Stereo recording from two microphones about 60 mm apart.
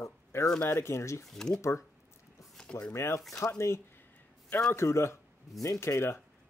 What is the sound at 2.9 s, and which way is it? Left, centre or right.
Speech, left.